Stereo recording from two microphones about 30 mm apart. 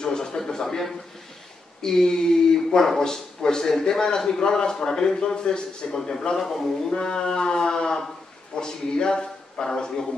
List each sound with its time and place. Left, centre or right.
0.0 s a sound: left
0.4 s a man's voice: centre
5.9 s a man's voice: centre
6.9 s a man's voice: left